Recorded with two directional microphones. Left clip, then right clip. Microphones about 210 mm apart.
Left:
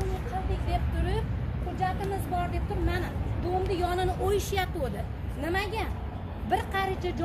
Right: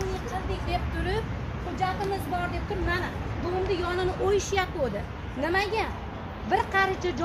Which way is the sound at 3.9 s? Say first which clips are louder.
Right 2 dB; 40° left (ahead or behind).